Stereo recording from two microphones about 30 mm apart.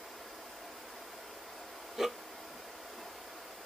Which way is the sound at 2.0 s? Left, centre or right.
Centre.